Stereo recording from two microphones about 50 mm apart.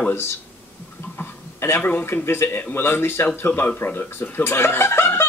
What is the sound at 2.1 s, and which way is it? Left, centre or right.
Speech, left.